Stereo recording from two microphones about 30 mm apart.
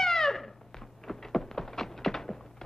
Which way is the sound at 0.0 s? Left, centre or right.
Centre.